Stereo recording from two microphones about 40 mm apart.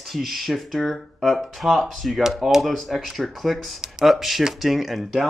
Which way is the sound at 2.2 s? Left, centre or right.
Centre.